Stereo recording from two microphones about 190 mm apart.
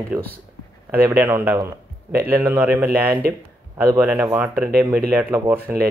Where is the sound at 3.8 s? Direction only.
10° right (ahead or behind).